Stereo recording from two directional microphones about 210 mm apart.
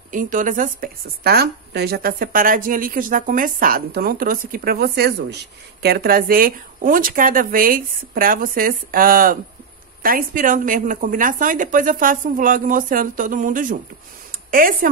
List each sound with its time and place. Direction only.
0.1 s a woman's voice: 40° right (ahead or behind)